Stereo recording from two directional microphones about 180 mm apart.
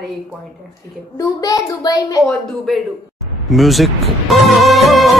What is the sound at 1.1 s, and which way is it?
A child's voice, 20° left (ahead or behind).